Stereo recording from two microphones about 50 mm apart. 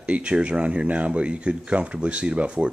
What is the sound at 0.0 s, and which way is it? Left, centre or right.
Speech, right.